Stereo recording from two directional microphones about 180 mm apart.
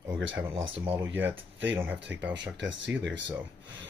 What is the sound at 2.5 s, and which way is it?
Speech, 80° right.